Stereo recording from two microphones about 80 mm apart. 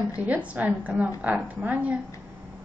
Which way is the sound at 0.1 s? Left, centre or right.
Centre.